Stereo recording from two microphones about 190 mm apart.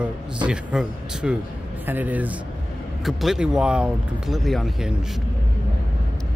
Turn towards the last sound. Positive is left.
turn(degrees=0)  # may be behind; listen again after turning